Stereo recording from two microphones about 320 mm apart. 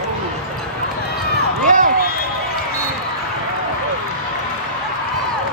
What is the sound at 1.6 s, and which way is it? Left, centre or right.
Run, right.